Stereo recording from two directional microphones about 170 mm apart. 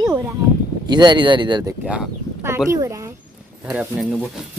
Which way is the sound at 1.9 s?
10° right (ahead or behind).